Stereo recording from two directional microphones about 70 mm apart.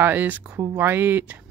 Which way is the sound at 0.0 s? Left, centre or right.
Right.